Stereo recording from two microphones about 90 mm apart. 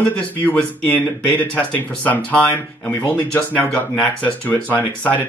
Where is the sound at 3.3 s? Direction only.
20° left (ahead or behind).